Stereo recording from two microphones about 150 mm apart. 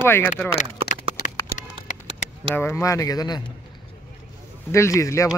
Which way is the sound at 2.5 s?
15° left (ahead or behind).